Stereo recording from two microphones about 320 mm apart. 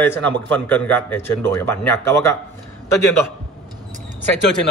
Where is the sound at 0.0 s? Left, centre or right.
Centre.